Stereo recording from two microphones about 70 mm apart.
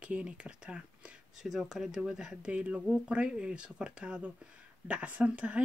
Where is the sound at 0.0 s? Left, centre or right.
Centre.